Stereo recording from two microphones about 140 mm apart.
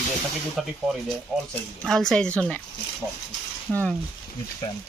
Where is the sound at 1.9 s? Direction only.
5° left (ahead or behind).